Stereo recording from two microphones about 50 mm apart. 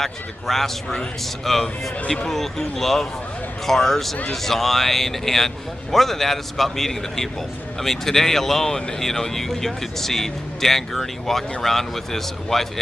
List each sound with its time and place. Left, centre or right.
0.0 s speech: centre